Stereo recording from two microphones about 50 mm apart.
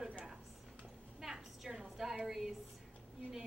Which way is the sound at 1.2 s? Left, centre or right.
Centre.